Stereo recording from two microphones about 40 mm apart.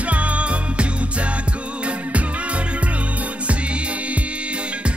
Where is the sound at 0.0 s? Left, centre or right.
Right.